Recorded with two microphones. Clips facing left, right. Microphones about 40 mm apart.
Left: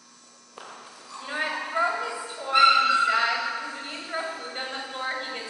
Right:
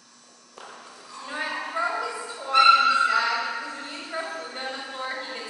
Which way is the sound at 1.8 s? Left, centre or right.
Left.